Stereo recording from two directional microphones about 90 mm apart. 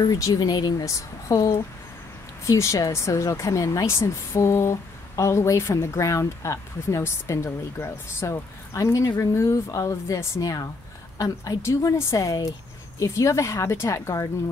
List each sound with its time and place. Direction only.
0.0 s speech: 45° left (ahead or behind)
0.8 s speech: 35° left (ahead or behind)